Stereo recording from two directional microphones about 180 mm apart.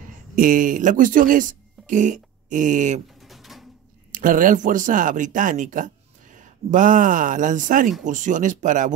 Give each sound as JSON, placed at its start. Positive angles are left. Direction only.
{"t": 0.4, "sound": "speech", "side_deg": -50}
{"t": 3.2, "sound": "pigeon", "side_deg": 0}
{"t": 4.1, "sound": "speech", "side_deg": -50}